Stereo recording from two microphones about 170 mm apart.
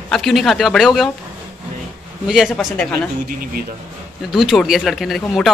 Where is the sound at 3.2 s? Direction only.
60° right (ahead or behind).